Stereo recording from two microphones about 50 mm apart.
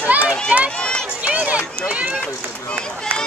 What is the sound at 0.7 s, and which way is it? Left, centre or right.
Run, left.